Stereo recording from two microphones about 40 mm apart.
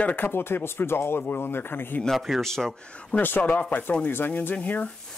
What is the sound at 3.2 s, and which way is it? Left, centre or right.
Speech, left.